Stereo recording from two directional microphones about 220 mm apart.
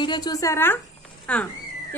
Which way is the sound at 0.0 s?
20° left (ahead or behind).